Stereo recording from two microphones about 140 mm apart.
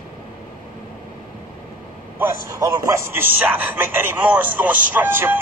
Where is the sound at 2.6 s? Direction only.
25° right (ahead or behind).